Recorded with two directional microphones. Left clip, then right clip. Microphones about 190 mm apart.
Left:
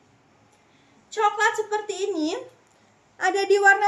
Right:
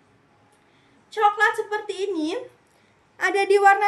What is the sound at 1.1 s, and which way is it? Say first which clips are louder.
A woman's voice: right 2 dB; 15° right (ahead or behind).